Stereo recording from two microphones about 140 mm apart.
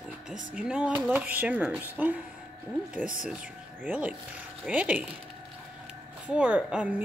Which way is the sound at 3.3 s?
10° right (ahead or behind).